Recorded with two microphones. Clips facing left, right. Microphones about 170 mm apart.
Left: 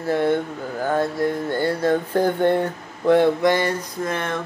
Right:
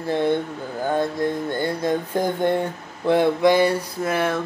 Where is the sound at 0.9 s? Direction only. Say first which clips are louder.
Left 1 dB; 20° right (ahead or behind).